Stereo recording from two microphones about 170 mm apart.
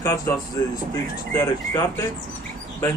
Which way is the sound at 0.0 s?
20° left (ahead or behind).